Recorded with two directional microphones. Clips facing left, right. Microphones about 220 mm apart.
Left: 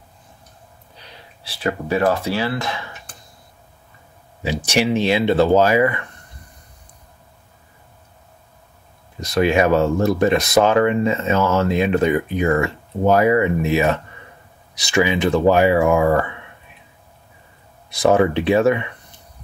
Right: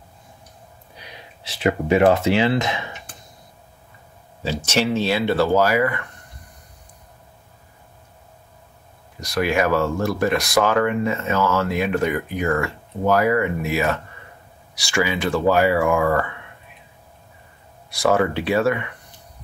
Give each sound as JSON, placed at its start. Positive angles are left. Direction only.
{"t": 0.9, "sound": "speech", "side_deg": -15}
{"t": 4.6, "sound": "speech", "side_deg": 15}
{"t": 9.2, "sound": "speech", "side_deg": 20}
{"t": 17.9, "sound": "speech", "side_deg": 20}